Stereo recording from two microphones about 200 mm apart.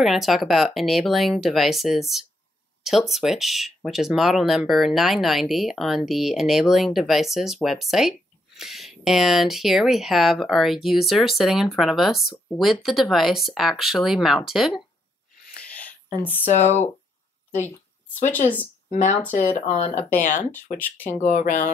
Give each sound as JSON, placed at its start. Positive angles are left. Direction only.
{"t": 0.0, "sound": "speech", "side_deg": 0}
{"t": 15.6, "sound": "a sound", "side_deg": 5}
{"t": 16.2, "sound": "speech", "side_deg": 10}
{"t": 16.4, "sound": "speech", "side_deg": 35}
{"t": 18.9, "sound": "speech", "side_deg": 35}
{"t": 20.7, "sound": "speech", "side_deg": 10}
{"t": 21.2, "sound": "speech", "side_deg": 40}